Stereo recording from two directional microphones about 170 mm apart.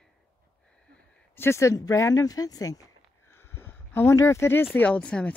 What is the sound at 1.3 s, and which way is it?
Speech, 15° left (ahead or behind).